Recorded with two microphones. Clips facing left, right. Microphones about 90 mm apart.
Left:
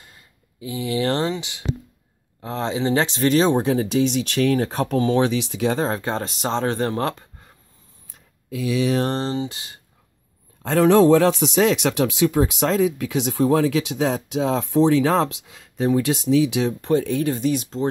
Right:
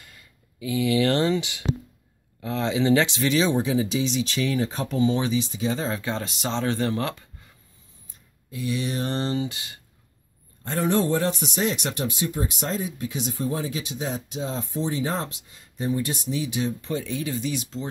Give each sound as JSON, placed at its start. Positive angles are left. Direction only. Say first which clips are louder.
{"t": 0.0, "sound": "speech", "louder": "left 1 dB", "side_deg": 30}
{"t": 8.1, "sound": "a sound", "louder": "left 8 dB", "side_deg": 90}
{"t": 9.1, "sound": "speech", "louder": "left 2 dB", "side_deg": 30}
{"t": 10.6, "sound": "speech", "louder": "left 9 dB", "side_deg": 90}